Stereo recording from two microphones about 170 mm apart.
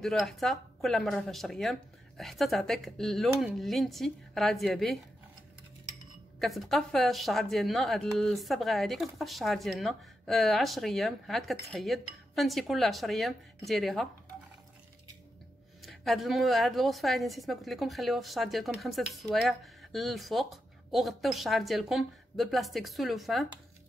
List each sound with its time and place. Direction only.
0.0 s a woman's voice: centre (ahead or behind)
6.4 s a woman's voice: centre (ahead or behind)
15.8 s a woman's voice: centre (ahead or behind)